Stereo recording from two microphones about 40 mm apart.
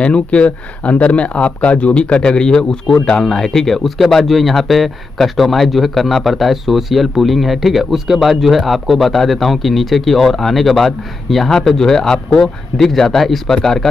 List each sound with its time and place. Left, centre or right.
0.0 s a man's voice: left; by 13.8 s centre